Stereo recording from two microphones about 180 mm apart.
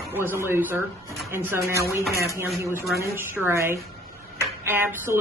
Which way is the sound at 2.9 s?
15° right (ahead or behind).